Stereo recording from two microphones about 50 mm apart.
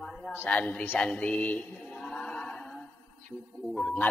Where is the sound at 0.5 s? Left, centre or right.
Left.